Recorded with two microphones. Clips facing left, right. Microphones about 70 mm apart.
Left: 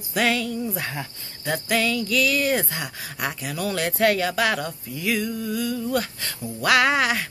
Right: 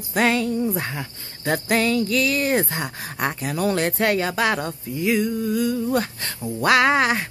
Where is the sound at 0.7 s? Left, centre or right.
Right.